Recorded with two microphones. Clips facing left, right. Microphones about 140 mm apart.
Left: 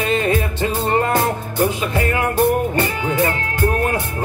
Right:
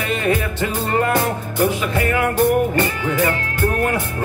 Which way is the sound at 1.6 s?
25° left (ahead or behind).